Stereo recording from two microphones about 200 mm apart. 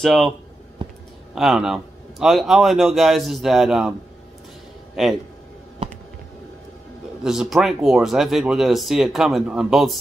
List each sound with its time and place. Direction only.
0.0 s speech: centre (ahead or behind)
0.8 s a sound: 25° right (ahead or behind)
1.3 s speech: centre (ahead or behind)
7.2 s speech: centre (ahead or behind)